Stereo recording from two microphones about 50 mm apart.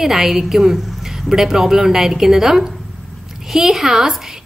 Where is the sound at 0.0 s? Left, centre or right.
Centre.